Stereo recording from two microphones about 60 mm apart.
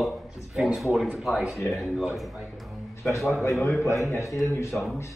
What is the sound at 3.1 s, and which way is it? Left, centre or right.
A man's voice, left.